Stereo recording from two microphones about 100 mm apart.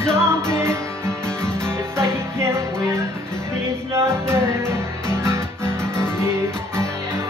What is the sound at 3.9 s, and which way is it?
Music, 25° right (ahead or behind).